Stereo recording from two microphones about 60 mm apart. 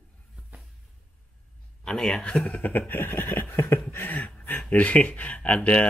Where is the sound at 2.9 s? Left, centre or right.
Left.